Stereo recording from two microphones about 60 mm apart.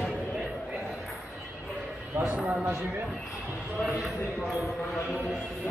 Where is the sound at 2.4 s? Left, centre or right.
Centre.